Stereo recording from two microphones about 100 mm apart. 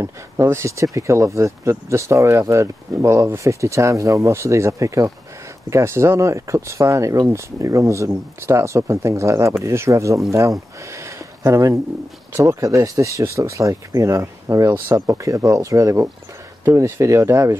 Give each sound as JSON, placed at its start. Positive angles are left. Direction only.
{"t": 0.0, "sound": "speech", "side_deg": -30}
{"t": 10.8, "sound": "a sound", "side_deg": -30}
{"t": 12.3, "sound": "speech", "side_deg": -30}